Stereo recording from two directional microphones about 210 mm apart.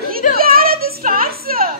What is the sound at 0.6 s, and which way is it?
Child singing, 45° right (ahead or behind).